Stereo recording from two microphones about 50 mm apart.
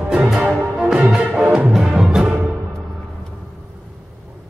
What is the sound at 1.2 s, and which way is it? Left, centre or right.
Music, right.